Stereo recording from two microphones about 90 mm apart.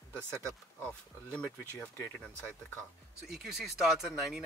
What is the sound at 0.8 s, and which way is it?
Speech, 10° left (ahead or behind).